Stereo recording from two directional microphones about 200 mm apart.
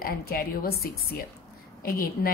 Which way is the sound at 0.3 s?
50° left (ahead or behind).